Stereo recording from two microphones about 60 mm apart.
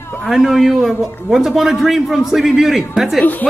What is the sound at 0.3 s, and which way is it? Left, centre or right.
Speech, centre.